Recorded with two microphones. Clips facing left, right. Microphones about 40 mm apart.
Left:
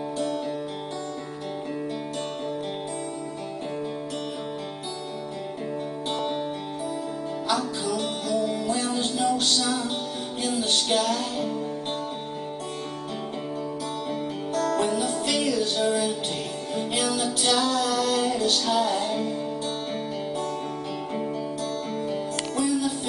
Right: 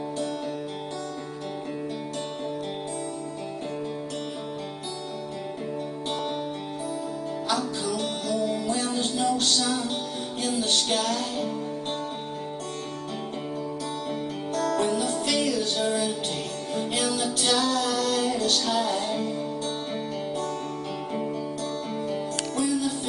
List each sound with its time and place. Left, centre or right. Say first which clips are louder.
7.5 s music: left 1 dB; centre
8.6 s music: left 1 dB; centre
14.5 s music: left 1 dB; centre
22.0 s music: left 1 dB; centre